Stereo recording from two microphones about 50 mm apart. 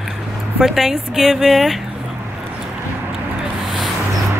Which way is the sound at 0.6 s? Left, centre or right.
Centre.